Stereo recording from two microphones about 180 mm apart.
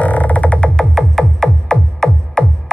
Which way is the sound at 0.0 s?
10° left (ahead or behind).